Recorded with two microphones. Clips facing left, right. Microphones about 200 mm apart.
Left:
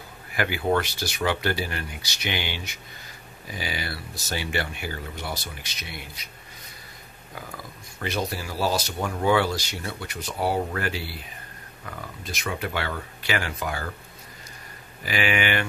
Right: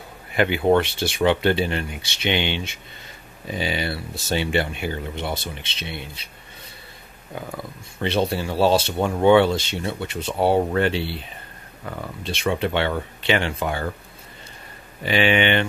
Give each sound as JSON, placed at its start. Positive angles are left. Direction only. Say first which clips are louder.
{"t": 0.3, "sound": "speech", "louder": "right 6 dB", "side_deg": -25}
{"t": 8.0, "sound": "speech", "louder": "right 7 dB", "side_deg": -30}
{"t": 15.0, "sound": "speech", "louder": "right 6 dB", "side_deg": -25}